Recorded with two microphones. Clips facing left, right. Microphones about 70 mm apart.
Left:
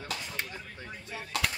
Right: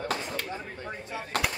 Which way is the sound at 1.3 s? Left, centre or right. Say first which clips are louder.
Right 3 dB; right.